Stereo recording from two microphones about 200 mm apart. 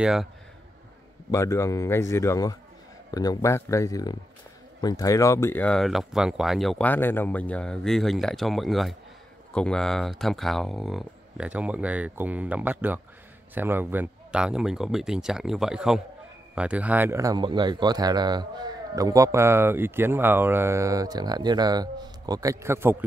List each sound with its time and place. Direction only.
0.0 s speech: centre (ahead or behind)
1.3 s speech: 15° left (ahead or behind); by 23.0 s 10° right (ahead or behind)